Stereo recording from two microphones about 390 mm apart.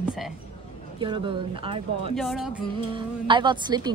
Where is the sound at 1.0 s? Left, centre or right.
Centre.